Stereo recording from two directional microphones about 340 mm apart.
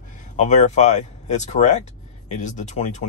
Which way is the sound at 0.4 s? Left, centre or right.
Left.